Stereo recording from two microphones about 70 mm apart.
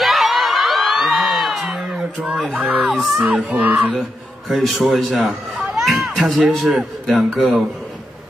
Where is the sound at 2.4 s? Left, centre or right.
Right.